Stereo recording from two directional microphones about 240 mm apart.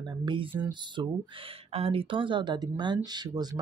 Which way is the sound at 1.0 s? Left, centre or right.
Centre.